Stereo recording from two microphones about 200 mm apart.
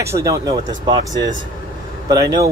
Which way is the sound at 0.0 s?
15° right (ahead or behind).